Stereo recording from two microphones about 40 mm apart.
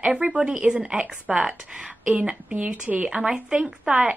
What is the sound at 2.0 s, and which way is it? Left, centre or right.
A woman's voice, right.